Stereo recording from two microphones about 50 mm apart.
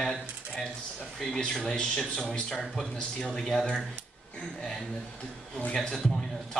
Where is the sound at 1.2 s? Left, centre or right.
Centre.